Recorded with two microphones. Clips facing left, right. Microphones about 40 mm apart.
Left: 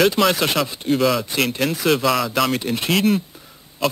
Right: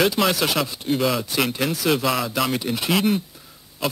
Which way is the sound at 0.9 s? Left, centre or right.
Centre.